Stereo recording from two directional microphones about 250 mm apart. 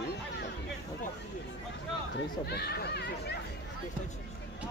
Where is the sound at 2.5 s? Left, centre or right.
Left.